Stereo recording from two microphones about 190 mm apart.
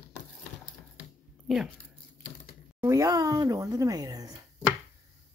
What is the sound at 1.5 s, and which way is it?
Speech, centre (ahead or behind).